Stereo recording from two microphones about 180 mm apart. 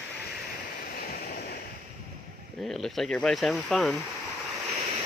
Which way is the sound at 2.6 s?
Centre (ahead or behind).